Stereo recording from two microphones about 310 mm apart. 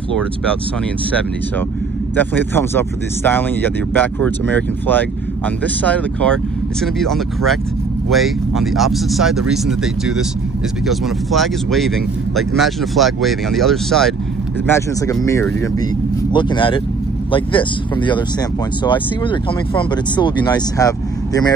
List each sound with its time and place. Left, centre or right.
2.1 s speech: centre